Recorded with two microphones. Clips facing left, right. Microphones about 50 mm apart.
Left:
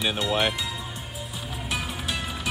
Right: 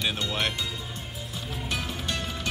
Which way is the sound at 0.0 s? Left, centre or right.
Centre.